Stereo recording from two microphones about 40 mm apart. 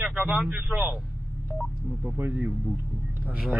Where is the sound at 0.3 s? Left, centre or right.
Right.